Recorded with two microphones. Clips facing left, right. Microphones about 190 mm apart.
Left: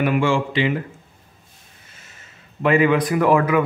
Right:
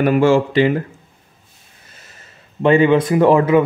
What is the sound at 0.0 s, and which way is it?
Speech, 40° right (ahead or behind).